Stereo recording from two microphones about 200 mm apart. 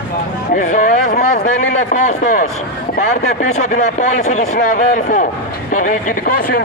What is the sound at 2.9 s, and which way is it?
Speech, 40° left (ahead or behind).